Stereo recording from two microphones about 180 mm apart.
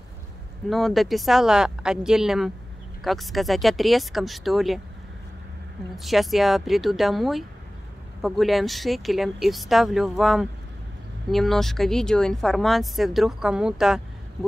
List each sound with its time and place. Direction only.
0.7 s speech: centre (ahead or behind)
5.9 s speech: centre (ahead or behind)